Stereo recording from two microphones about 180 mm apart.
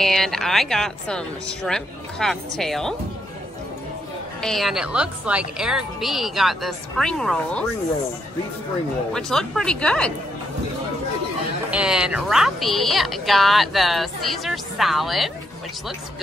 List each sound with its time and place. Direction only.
0.0 s speech: centre (ahead or behind)
4.4 s speech: centre (ahead or behind)
9.1 s speech: centre (ahead or behind)
11.7 s speech: 5° right (ahead or behind)